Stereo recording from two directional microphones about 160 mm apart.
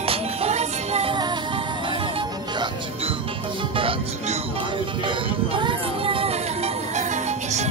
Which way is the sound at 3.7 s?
35° right (ahead or behind).